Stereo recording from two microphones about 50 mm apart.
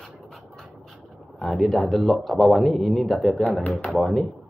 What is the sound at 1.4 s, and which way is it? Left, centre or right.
Speech, centre.